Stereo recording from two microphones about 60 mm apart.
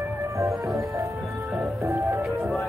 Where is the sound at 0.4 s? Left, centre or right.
Right.